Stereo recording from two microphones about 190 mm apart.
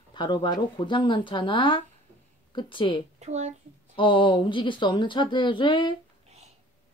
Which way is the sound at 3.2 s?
35° right (ahead or behind).